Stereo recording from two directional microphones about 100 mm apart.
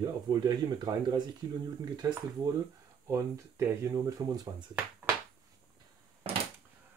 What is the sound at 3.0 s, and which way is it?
Speech, 30° right (ahead or behind).